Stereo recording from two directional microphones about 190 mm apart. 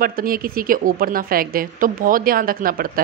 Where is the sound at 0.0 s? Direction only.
50° right (ahead or behind).